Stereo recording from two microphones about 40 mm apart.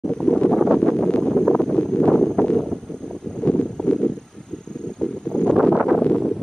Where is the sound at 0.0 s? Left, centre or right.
Centre.